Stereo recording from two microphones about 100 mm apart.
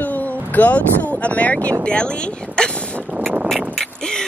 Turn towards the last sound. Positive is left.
turn(degrees=5)  # may be behind; listen again after turning